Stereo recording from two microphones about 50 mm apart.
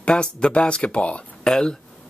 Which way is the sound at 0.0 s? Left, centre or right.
Centre.